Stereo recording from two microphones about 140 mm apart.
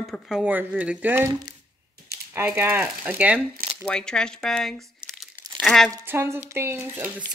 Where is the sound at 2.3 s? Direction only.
15° right (ahead or behind).